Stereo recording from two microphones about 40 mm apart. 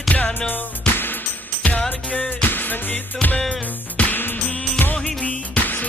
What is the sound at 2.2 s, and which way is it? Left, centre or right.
Music, left.